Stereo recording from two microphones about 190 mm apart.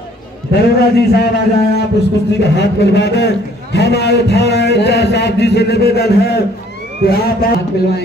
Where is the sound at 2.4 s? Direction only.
65° left (ahead or behind).